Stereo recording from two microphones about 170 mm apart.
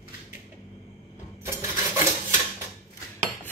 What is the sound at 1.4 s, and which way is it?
Coin, 15° right (ahead or behind).